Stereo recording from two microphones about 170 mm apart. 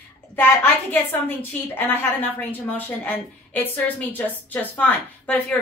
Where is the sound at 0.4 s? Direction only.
10° left (ahead or behind).